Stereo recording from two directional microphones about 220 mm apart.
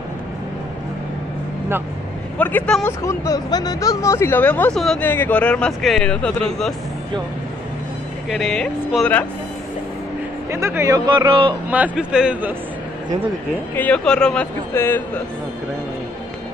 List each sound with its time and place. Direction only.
2.3 s speech: 5° left (ahead or behind)
8.3 s speech: centre (ahead or behind)
10.5 s speech: 10° right (ahead or behind)
11.7 s speech: 5° right (ahead or behind)
13.7 s speech: 5° left (ahead or behind)